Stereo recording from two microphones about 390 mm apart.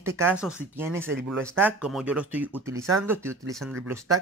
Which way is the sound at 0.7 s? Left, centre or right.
Centre.